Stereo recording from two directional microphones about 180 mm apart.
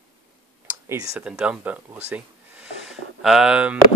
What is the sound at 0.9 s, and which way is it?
Speech, 20° right (ahead or behind).